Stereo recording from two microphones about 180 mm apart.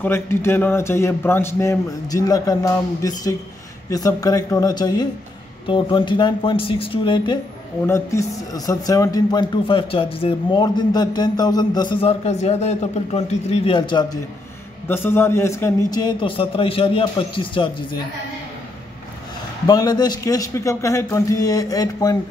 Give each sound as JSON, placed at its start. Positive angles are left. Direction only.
{"t": 0.0, "sound": "speech", "side_deg": 15}
{"t": 7.8, "sound": "speech", "side_deg": 15}
{"t": 14.9, "sound": "speech", "side_deg": 15}
{"t": 19.6, "sound": "speech", "side_deg": 20}